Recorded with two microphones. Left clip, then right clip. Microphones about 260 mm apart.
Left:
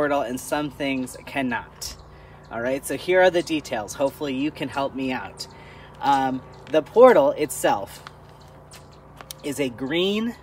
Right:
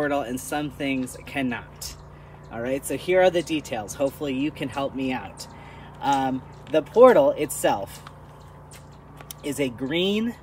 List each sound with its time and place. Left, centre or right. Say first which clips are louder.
0.0 s speech: left 3 dB; centre
9.4 s speech: even; centre